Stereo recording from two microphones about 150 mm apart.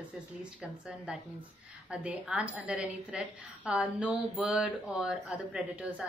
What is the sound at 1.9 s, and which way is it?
A woman's voice, 10° right (ahead or behind).